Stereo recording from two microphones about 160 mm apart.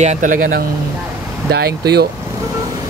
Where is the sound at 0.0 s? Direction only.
50° right (ahead or behind).